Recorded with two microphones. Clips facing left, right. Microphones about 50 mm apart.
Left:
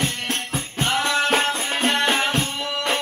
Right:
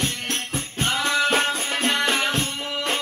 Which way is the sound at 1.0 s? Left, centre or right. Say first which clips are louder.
Left 1 dB; left.